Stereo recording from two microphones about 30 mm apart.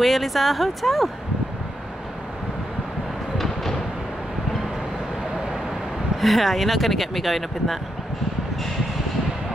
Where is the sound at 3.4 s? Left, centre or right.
Centre.